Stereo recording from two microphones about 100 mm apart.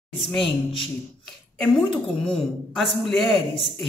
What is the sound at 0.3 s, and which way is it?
Speech, 5° left (ahead or behind).